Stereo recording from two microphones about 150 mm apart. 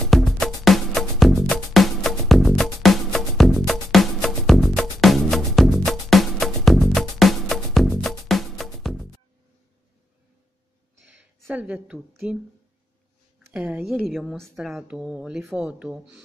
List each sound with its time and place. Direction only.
0.0 s music: centre (ahead or behind)
11.1 s a sound: 10° right (ahead or behind)
13.5 s speech: 10° right (ahead or behind)